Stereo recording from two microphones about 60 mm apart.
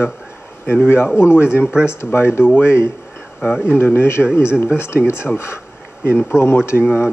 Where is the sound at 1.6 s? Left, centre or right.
Centre.